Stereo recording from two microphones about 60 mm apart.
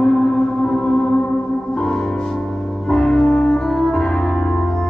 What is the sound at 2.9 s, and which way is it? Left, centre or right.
Music, centre.